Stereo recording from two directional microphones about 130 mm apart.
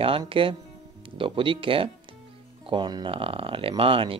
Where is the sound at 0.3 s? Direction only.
40° right (ahead or behind).